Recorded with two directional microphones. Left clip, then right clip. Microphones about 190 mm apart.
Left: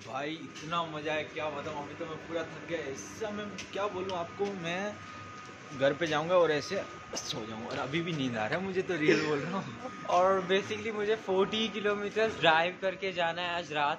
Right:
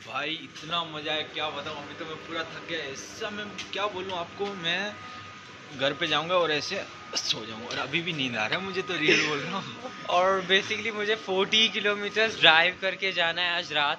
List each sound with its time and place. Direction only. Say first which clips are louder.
0.1 s a man's voice: right 5 dB; 20° left (ahead or behind)
9.0 s a man's voice: right 5 dB; centre (ahead or behind)